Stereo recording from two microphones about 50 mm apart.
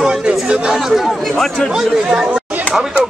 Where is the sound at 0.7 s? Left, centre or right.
Centre.